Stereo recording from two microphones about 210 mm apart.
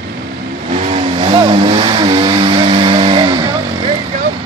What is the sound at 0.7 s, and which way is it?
Vehicle, 30° right (ahead or behind).